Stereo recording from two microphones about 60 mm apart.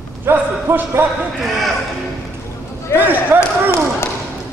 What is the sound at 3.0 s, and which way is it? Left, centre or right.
Speech, right.